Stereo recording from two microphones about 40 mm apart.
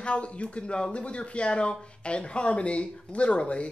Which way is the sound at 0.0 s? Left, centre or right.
Left.